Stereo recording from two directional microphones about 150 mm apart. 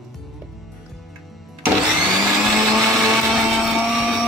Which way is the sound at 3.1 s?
Centre (ahead or behind).